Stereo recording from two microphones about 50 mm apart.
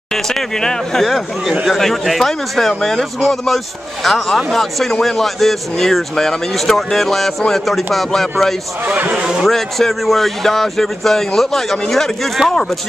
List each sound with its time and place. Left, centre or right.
0.1 s speech: centre
1.0 s speech: centre
8.8 s speech: right
9.5 s speech: centre